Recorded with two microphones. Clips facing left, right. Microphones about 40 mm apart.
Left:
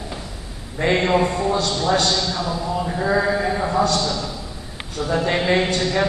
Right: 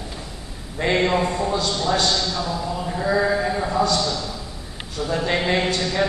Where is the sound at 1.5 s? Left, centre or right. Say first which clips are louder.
Left 2 dB; left.